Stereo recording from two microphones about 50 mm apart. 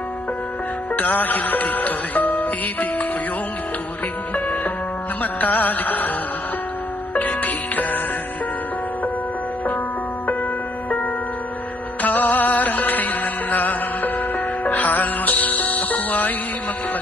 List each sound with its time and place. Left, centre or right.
0.9 s music: left
5.2 s music: left
7.2 s music: left
12.0 s music: left